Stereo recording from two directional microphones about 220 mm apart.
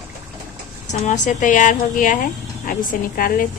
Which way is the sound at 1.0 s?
35° left (ahead or behind).